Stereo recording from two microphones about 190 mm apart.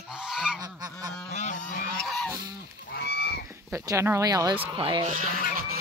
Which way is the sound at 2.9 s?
60° left (ahead or behind).